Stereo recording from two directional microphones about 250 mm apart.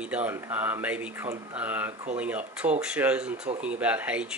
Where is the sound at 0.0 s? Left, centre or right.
Centre.